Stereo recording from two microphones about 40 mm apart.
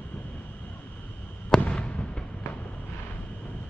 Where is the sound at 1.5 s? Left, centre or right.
Left.